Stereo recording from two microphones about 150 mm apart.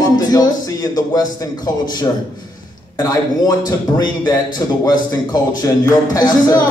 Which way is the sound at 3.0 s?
25° left (ahead or behind).